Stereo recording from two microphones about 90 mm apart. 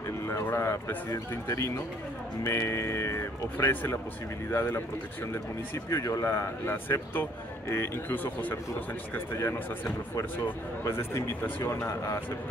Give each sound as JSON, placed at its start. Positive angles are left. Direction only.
{"t": 0.5, "sound": "speech", "side_deg": 30}
{"t": 5.9, "sound": "speech", "side_deg": 35}